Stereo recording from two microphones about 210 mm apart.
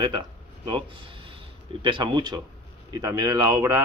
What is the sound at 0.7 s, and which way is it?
Speech, 25° right (ahead or behind).